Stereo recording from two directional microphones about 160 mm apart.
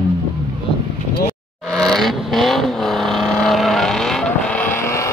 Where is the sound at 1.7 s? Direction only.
Centre (ahead or behind).